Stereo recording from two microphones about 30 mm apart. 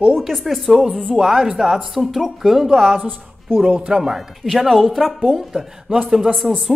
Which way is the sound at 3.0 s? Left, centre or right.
Right.